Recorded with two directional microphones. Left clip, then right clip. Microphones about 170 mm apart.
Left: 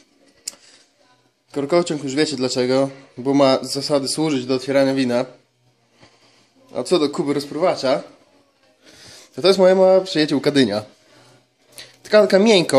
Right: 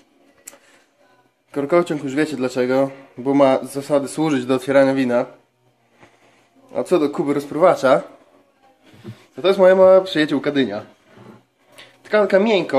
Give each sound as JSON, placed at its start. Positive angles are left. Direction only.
{"t": 1.5, "sound": "a man's voice", "side_deg": 10}
{"t": 4.3, "sound": "speech", "side_deg": -5}
{"t": 4.6, "sound": "a man's voice", "side_deg": 10}
{"t": 6.7, "sound": "speech", "side_deg": 10}
{"t": 9.3, "sound": "speech", "side_deg": 40}
{"t": 9.6, "sound": "speech", "side_deg": 20}
{"t": 10.4, "sound": "speech", "side_deg": 40}